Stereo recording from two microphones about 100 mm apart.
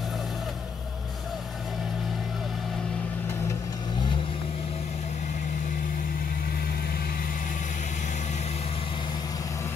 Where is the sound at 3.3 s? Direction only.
30° left (ahead or behind); by 5.1 s 90° left.